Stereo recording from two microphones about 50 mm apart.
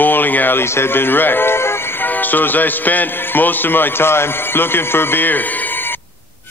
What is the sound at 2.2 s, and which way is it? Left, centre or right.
A man's voice, left.